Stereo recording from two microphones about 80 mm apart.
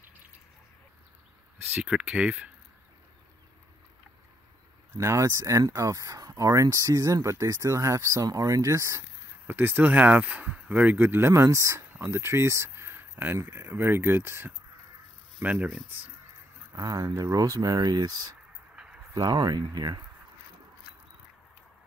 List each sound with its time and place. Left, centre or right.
1.9 s speech: centre
4.9 s speech: right
9.5 s speech: right
15.4 s speech: centre
16.7 s speech: right
19.1 s speech: right